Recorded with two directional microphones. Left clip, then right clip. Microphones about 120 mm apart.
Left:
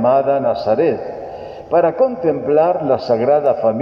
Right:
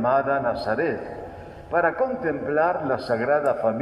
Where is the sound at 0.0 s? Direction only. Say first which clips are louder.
Left 7 dB; 30° left (ahead or behind).